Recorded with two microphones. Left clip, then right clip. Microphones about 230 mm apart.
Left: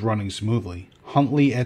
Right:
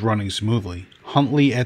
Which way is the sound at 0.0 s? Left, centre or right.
Right.